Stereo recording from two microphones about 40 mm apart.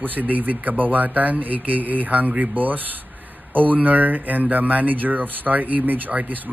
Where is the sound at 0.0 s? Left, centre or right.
Right.